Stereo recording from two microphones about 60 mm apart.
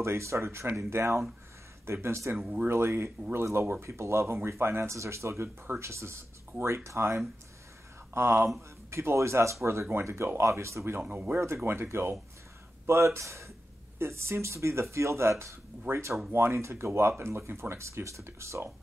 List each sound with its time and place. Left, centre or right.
0.0 s speech: right
2.3 s speech: centre
2.7 s speech: right
11.0 s speech: right
11.4 s speech: right